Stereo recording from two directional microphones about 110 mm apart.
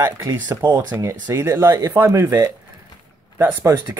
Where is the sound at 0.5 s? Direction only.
15° right (ahead or behind).